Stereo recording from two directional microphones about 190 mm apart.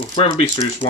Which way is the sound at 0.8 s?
30° left (ahead or behind).